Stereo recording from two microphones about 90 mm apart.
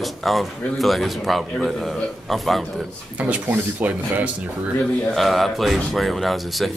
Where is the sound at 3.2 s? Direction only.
15° right (ahead or behind).